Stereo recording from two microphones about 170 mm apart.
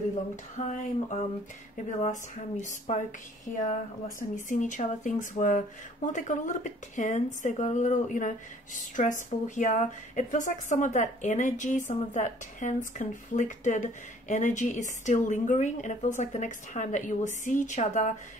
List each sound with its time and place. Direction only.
0.6 s a woman's voice: 45° left (ahead or behind)
4.2 s a woman's voice: 50° left (ahead or behind)